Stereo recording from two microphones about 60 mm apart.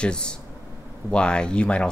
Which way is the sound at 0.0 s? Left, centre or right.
Centre.